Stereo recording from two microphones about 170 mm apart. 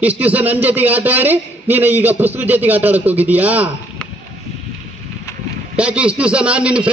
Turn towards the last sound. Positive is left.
turn(degrees=-5)  # may be behind; listen again after turning